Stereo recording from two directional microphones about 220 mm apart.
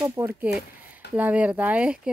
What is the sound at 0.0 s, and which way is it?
Speech, 10° right (ahead or behind).